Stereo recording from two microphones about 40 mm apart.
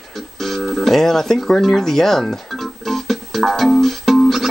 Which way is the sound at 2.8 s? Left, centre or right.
Centre.